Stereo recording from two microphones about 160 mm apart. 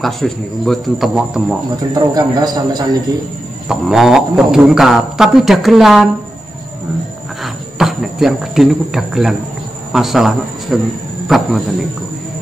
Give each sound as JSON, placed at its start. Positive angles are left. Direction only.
{"t": 0.0, "sound": "a man's voice", "side_deg": 0}
{"t": 2.1, "sound": "a man's voice", "side_deg": -25}
{"t": 3.6, "sound": "a man's voice", "side_deg": 0}
{"t": 7.4, "sound": "a man's voice", "side_deg": 0}